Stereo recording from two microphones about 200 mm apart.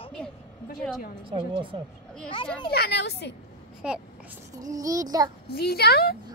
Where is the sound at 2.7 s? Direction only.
55° left (ahead or behind).